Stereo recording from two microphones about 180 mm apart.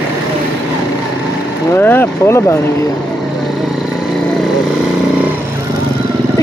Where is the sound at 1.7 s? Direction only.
10° left (ahead or behind).